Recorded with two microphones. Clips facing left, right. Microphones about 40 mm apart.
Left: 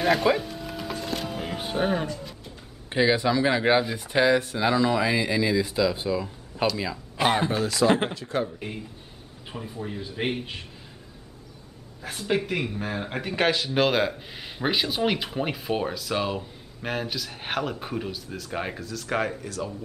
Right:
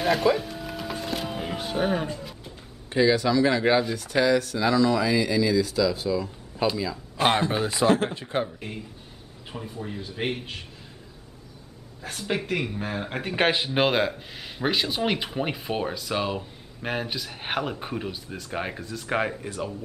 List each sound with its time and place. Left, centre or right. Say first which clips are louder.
0.0 s music: even; centre
1.6 s speech: even; centre
2.1 s a sound: even; centre
2.9 s speech: right 1 dB; left
7.5 s speech: even; right
8.5 s speech: left 1 dB; centre
12.0 s speech: left 3 dB; centre
13.4 s speech: even; right
14.0 s speech: even; centre
18.8 s speech: right 1 dB; centre